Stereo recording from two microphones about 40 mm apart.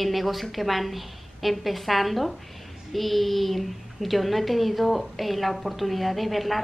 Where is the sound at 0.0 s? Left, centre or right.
Centre.